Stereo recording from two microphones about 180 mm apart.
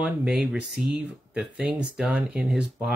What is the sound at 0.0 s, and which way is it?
Speech, 5° right (ahead or behind).